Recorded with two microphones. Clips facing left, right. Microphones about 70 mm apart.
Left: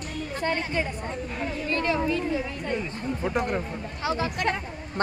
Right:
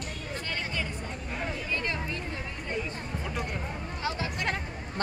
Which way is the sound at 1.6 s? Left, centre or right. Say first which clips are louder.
Left 10 dB; left.